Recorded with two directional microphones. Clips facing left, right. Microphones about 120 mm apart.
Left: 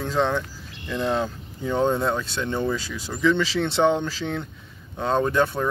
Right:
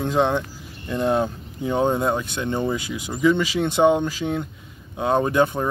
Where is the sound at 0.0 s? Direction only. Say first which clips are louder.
Right 3 dB; 20° right (ahead or behind).